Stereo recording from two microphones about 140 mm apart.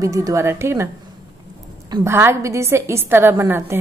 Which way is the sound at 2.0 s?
20° right (ahead or behind).